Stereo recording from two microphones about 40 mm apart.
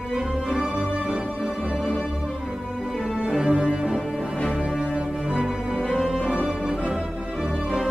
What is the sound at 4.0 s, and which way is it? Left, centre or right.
Music, centre.